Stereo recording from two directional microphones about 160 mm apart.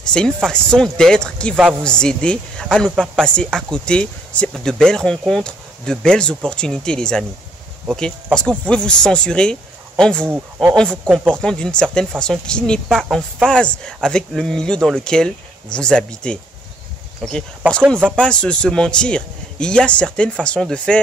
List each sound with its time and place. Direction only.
0.1 s speech: 5° left (ahead or behind)
8.4 s a man's voice: 5° left (ahead or behind)
10.3 s a man's voice: 5° right (ahead or behind)